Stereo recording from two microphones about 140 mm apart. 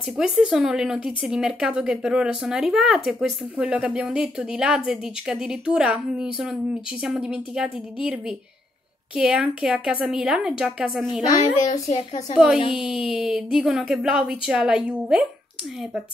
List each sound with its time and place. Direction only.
0.2 s speech: 5° right (ahead or behind)
11.6 s speech: 55° left (ahead or behind)
12.7 s speech: 5° right (ahead or behind)